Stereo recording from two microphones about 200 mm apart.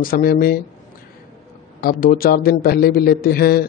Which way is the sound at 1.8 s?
45° left (ahead or behind).